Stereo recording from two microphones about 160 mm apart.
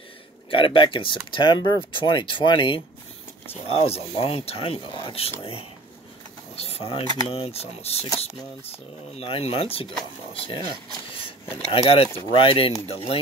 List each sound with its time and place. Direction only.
0.5 s speech: 35° left (ahead or behind)